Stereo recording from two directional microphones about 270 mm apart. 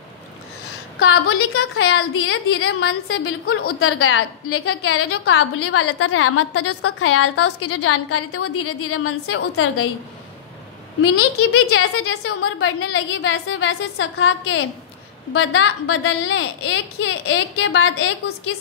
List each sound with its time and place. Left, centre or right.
1.2 s a woman's voice: left
11.0 s a woman's voice: left